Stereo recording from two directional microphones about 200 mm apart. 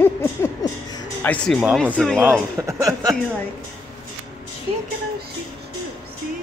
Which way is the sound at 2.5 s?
15° right (ahead or behind).